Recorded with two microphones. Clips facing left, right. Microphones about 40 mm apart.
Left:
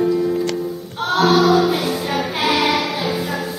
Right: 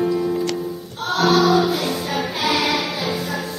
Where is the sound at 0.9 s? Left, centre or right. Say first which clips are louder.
Left 2 dB; centre.